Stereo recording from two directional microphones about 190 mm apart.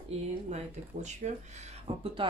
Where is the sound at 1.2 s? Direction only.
40° right (ahead or behind).